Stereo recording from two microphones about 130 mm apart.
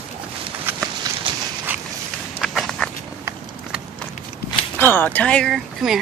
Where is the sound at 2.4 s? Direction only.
Centre (ahead or behind).